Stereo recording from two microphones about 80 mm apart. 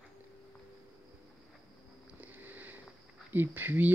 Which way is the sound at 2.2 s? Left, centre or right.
Right.